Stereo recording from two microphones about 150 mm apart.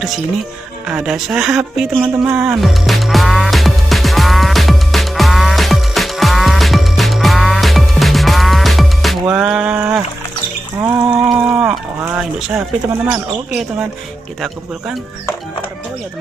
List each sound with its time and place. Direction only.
0.8 s speech: 5° right (ahead or behind)
2.2 s music: 15° right (ahead or behind)
2.5 s music: centre (ahead or behind)
10.8 s a sound: 20° right (ahead or behind)
11.4 s livestock: 10° right (ahead or behind)
12.0 s a sound: 15° right (ahead or behind)
12.4 s speech: 5° right (ahead or behind)